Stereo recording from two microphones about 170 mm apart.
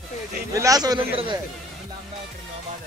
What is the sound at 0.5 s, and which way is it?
Speech, 20° right (ahead or behind).